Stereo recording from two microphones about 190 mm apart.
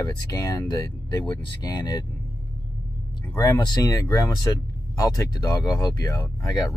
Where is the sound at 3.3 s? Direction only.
20° left (ahead or behind).